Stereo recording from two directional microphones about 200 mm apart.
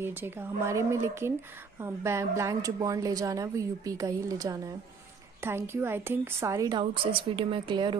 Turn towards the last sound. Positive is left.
turn(degrees=-25)  # may be behind; listen again after turning